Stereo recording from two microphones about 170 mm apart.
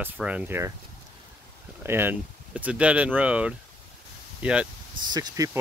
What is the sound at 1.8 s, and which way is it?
Speech, 15° right (ahead or behind).